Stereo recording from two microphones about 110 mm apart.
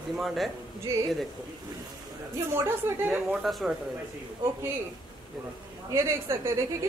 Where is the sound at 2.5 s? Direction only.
20° right (ahead or behind).